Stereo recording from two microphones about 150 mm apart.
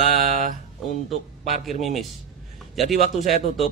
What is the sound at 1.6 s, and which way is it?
Mantra, centre (ahead or behind).